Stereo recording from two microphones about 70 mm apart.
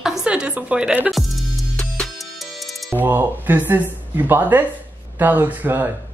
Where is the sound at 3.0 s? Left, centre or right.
Right.